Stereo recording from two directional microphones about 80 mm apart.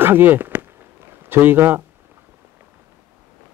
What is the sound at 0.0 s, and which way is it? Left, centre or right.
Speech, right.